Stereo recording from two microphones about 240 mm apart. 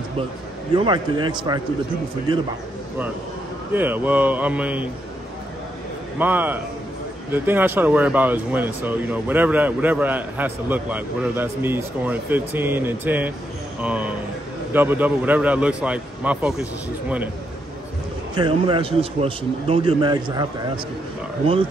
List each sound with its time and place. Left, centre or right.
0.7 s a man's voice: centre
3.7 s speech: centre
6.1 s speech: centre
18.3 s a man's voice: right